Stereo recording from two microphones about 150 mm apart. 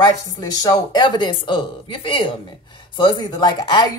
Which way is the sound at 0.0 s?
25° left (ahead or behind).